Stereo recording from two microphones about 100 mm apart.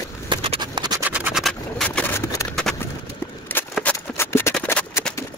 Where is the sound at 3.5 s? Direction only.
20° left (ahead or behind).